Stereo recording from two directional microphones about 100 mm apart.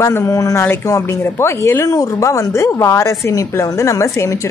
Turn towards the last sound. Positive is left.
turn(degrees=30)  # may be behind; listen again after turning